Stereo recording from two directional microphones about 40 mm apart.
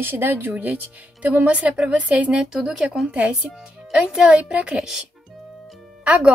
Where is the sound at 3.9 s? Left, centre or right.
Centre.